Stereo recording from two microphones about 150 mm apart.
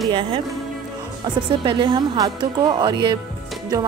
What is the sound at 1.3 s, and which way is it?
A woman's voice, 30° right (ahead or behind).